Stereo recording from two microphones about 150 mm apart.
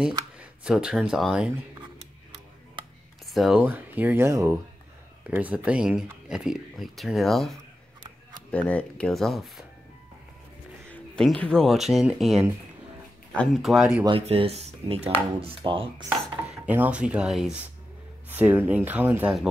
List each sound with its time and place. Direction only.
0.4 s speech: 5° right (ahead or behind)
3.3 s speech: 5° right (ahead or behind)
10.9 s speech: 5° left (ahead or behind)
14.2 s speech: 40° right (ahead or behind)
16.6 s speech: 10° right (ahead or behind)